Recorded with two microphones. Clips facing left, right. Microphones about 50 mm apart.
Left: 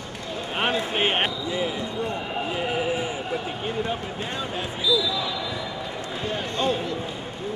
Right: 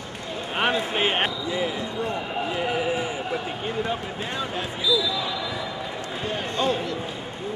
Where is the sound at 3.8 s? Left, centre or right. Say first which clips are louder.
Right 1 dB; centre.